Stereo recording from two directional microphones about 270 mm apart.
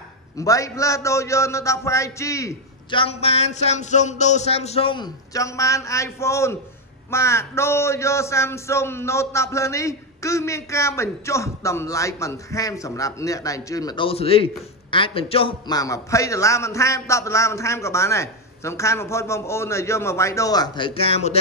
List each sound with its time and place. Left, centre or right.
0.4 s a man's voice: centre